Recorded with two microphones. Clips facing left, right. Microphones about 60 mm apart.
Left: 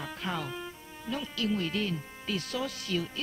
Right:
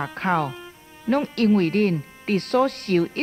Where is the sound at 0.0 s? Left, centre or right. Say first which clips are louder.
Right 12 dB; right.